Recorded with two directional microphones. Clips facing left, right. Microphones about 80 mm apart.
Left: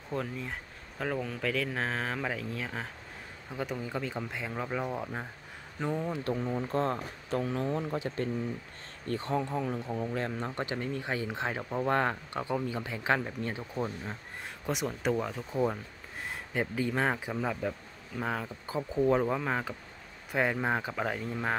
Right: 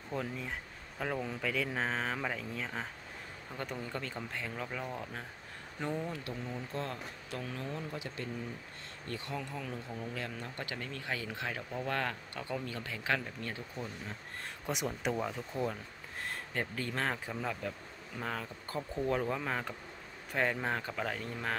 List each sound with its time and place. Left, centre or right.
0.1 s speech: centre; by 5.2 s left
5.8 s speech: centre
6.2 s speech: left
10.5 s speech: left
13.7 s speech: left
14.4 s speech: centre